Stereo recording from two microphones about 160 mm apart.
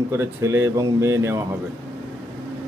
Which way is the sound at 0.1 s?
15° right (ahead or behind).